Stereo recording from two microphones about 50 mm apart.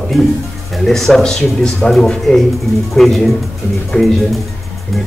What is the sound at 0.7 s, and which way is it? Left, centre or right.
Speech, centre.